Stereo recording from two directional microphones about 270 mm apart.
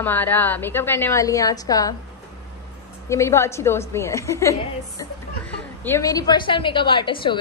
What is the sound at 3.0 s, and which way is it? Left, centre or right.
Speech, centre.